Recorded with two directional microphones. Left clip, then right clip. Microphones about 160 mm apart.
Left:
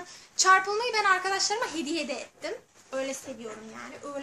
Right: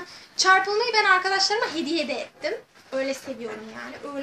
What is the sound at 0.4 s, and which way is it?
Speech, 15° left (ahead or behind).